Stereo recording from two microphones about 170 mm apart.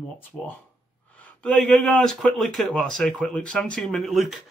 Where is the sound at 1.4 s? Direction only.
5° left (ahead or behind).